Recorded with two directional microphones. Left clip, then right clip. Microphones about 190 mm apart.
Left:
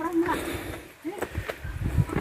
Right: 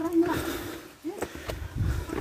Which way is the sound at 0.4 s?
10° right (ahead or behind).